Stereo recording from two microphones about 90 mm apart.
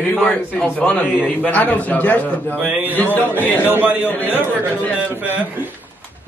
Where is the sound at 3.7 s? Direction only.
20° right (ahead or behind).